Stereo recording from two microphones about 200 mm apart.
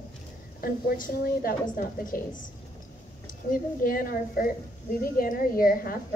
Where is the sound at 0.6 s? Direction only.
45° left (ahead or behind).